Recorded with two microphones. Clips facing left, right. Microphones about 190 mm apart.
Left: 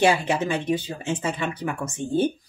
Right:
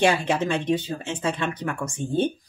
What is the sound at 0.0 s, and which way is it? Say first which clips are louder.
Speech: left 1 dB; 5° left (ahead or behind).